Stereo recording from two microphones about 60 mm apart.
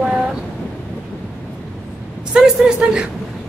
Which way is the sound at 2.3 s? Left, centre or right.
Centre.